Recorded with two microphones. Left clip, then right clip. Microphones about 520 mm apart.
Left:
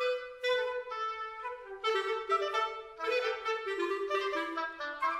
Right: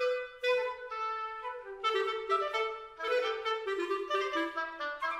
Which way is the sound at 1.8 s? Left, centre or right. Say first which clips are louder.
Even; right.